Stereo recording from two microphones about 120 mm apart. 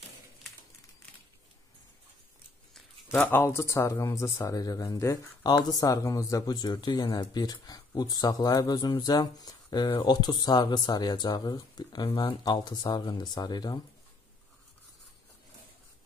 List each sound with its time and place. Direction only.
3.1 s speech: 15° left (ahead or behind); by 13.7 s 35° left (ahead or behind)